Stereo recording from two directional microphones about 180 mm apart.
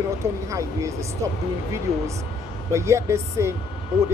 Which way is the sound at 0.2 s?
15° right (ahead or behind).